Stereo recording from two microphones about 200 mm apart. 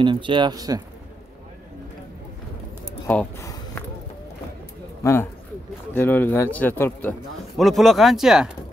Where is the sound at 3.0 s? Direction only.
10° left (ahead or behind).